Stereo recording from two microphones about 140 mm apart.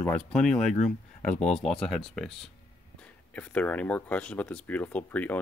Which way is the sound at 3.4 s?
10° left (ahead or behind).